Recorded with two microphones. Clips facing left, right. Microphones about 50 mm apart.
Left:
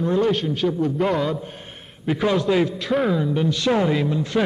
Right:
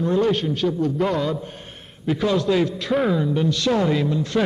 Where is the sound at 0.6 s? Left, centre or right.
Centre.